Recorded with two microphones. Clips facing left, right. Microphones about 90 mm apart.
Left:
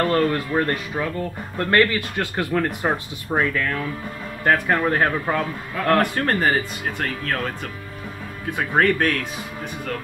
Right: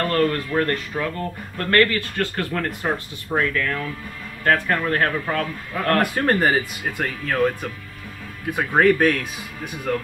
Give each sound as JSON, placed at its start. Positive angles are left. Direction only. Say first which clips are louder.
{"t": 0.0, "sound": "a man's voice", "louder": "left 1 dB", "side_deg": 20}
{"t": 5.9, "sound": "speech", "louder": "right 1 dB", "side_deg": -5}
{"t": 8.5, "sound": "speech", "louder": "right 2 dB", "side_deg": -5}